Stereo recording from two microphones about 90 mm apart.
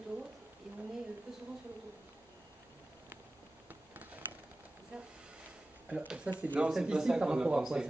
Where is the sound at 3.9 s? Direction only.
20° right (ahead or behind).